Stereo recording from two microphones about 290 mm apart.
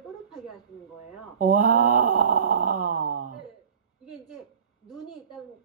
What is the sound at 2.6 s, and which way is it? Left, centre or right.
Grunt, right.